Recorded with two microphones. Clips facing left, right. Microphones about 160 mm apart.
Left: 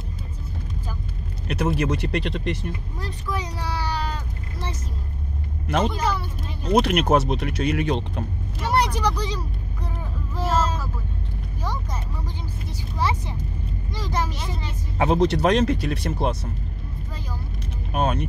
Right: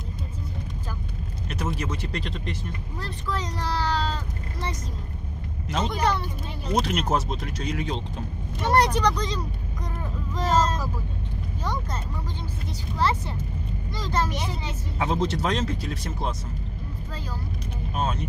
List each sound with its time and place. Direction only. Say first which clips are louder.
1.5 s speech: left 7 dB; 65° left (ahead or behind)
3.0 s speech: even; 10° left (ahead or behind)
5.7 s speech: left 2 dB; 60° left (ahead or behind)
8.6 s speech: right 1 dB; 10° left (ahead or behind)
10.3 s vehicle: right 1 dB; 10° left (ahead or behind)
12.9 s speech: right 1 dB; 10° left (ahead or behind)
14.3 s speech: right 1 dB; 15° right (ahead or behind)
15.0 s speech: left 6 dB; 65° left (ahead or behind)
17.9 s speech: left 5 dB; 65° left (ahead or behind)